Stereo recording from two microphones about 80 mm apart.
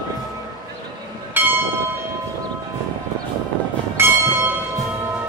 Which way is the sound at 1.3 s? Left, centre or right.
Right.